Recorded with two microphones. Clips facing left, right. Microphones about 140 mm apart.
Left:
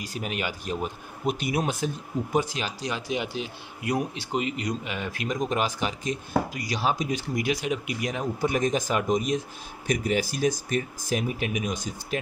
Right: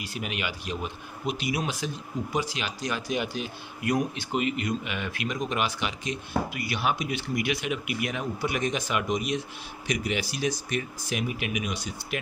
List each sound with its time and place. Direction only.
0.0 s speech: 40° left (ahead or behind)
2.8 s speech: 25° left (ahead or behind); by 12.2 s 45° left (ahead or behind)